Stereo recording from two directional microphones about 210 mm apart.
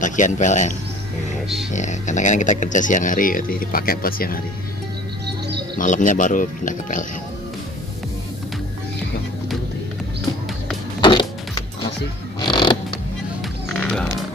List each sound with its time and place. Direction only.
0.0 s speech: 35° left (ahead or behind)
5.8 s speech: 40° left (ahead or behind)
11.0 s music: 20° left (ahead or behind)
12.4 s a sound: 20° left (ahead or behind)
13.4 s music: centre (ahead or behind)